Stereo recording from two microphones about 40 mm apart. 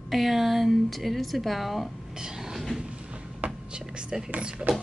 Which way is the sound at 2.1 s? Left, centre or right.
Centre.